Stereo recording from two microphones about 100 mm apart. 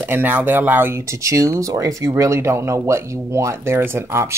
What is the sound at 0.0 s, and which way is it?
Speech, 20° right (ahead or behind).